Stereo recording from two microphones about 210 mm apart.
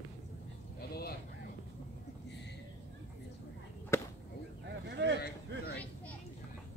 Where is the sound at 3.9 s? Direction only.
15° left (ahead or behind).